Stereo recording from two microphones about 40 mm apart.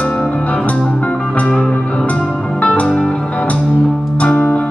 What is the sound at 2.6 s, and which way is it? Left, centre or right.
Music, left.